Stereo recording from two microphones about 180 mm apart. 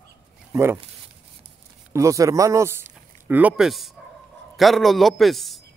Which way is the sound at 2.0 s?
15° right (ahead or behind).